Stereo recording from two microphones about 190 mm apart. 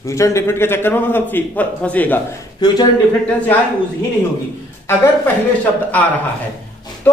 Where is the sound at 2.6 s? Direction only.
20° left (ahead or behind).